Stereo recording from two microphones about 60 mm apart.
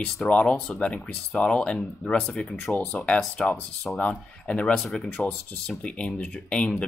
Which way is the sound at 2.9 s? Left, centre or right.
Centre.